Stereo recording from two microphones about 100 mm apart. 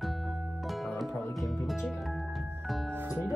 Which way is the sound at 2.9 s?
20° right (ahead or behind).